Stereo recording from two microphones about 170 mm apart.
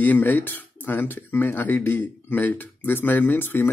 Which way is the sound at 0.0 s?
10° left (ahead or behind).